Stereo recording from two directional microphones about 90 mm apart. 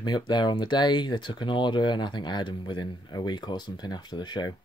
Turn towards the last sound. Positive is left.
turn(degrees=55)  # may be behind; listen again after turning